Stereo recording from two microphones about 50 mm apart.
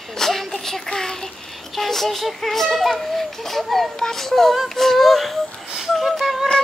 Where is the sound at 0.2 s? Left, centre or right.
Centre.